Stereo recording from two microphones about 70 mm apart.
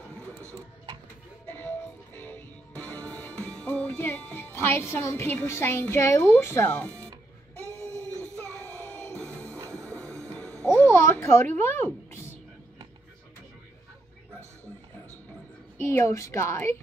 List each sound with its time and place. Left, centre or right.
1.5 s music: left
6.4 s a woman's voice: left
6.8 s speech: left
7.9 s music: left
11.0 s a sound: left
15.8 s a woman's voice: left